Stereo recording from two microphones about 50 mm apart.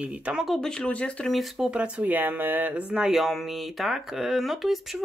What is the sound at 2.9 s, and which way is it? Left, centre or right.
Speech, centre.